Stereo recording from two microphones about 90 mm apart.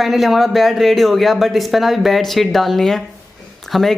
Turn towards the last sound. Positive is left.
turn(degrees=0)  # may be behind; listen again after turning